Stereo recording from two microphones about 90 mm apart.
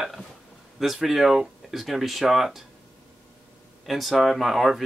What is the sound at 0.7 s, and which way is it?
Speech, 5° right (ahead or behind).